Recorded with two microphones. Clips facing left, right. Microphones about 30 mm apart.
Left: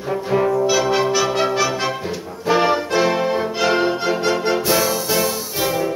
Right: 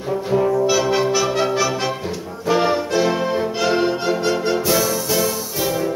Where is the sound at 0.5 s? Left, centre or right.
Centre.